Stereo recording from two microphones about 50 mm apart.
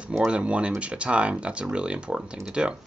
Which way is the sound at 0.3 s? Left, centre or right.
Right.